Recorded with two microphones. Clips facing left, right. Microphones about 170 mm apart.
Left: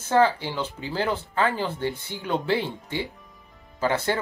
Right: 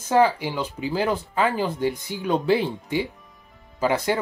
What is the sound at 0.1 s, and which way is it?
Speech, 15° right (ahead or behind).